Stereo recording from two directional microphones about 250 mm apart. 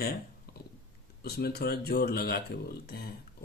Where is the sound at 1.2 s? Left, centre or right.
Left.